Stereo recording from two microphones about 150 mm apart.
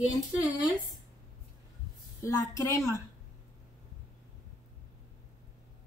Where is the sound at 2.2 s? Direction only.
20° left (ahead or behind).